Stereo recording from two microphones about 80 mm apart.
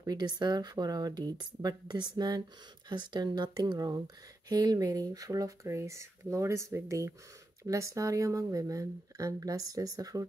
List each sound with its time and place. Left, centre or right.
0.0 s speech: right